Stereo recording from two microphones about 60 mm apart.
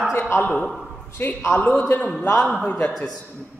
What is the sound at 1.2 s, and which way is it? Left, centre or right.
A man's voice, left.